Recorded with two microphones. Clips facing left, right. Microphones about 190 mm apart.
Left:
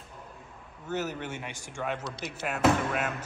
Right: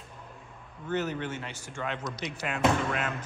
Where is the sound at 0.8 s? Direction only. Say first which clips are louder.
Right 2 dB; 5° left (ahead or behind).